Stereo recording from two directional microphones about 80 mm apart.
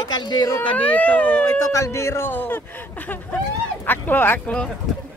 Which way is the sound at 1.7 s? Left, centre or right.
Left.